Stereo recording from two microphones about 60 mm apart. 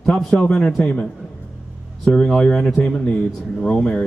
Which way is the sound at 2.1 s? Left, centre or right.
Centre.